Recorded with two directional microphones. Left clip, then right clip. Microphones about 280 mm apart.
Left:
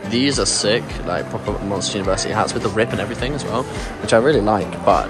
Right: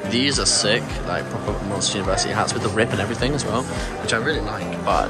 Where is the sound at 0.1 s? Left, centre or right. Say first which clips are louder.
Left 2 dB; centre.